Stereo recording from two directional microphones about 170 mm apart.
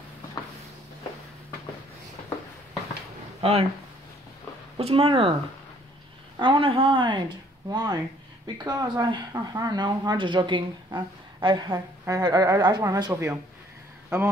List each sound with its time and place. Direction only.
3.3 s speech: 35° right (ahead or behind)
4.7 s speech: 35° right (ahead or behind)
6.3 s speech: 30° right (ahead or behind)